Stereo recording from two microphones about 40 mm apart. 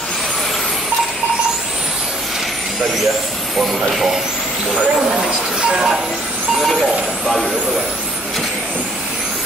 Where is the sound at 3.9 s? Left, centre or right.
Centre.